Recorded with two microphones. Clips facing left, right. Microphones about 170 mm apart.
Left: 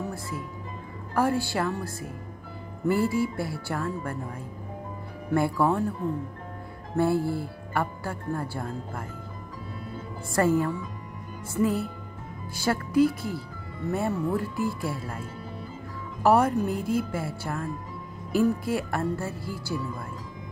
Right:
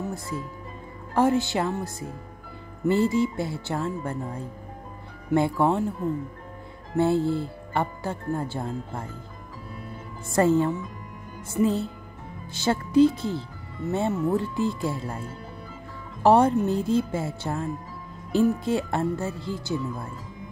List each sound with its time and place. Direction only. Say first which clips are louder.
1.1 s speech: right 3 dB; 20° right (ahead or behind)
7.0 s speech: right 2 dB; 20° right (ahead or behind)
10.3 s speech: right 3 dB; 25° right (ahead or behind)